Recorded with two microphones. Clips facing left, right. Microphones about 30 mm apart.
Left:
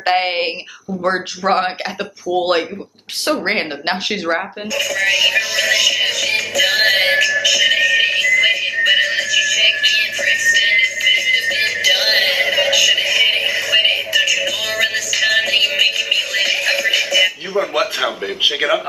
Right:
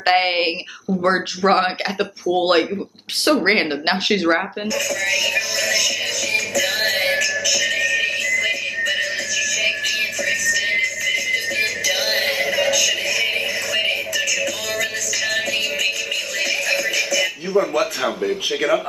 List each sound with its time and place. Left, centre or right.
0.0 s speech: centre
4.7 s speech: left
5.7 s music: left
16.9 s speech: left